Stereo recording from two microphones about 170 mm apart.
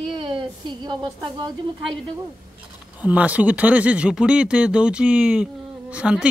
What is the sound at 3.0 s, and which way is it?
Speech, 10° right (ahead or behind).